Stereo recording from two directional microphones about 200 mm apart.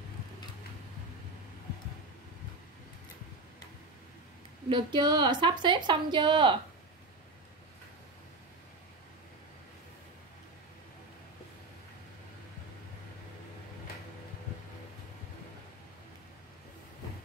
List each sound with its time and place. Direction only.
4.6 s a woman's voice: 20° right (ahead or behind)